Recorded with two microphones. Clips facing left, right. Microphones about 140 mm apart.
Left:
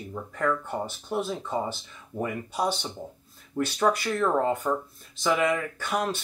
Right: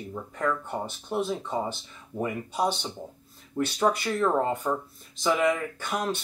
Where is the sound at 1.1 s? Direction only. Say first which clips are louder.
Right 1 dB; 5° left (ahead or behind).